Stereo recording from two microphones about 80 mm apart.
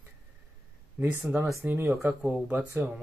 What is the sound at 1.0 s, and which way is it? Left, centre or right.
Speech, right.